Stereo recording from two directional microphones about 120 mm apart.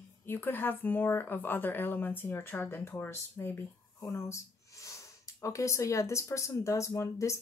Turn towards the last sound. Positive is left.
turn(degrees=25)  # may be behind; listen again after turning